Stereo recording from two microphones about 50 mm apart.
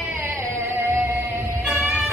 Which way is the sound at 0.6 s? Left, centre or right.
Right.